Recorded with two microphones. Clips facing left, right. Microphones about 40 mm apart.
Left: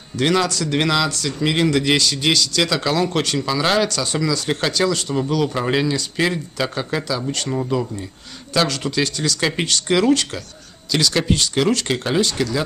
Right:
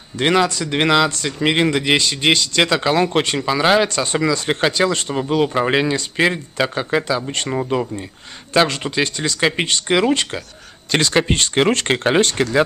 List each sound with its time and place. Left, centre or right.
0.1 s speech: right
10.9 s speech: right